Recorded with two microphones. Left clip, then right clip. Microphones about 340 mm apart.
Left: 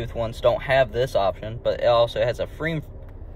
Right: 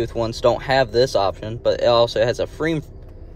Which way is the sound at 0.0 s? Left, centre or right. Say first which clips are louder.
Right 3 dB; right.